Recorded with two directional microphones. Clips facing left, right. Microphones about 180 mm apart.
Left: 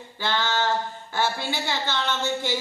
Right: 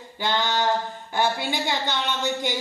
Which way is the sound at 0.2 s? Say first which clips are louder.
Right 1 dB; 15° right (ahead or behind).